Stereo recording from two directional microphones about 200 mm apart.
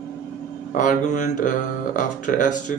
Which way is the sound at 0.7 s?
40° left (ahead or behind).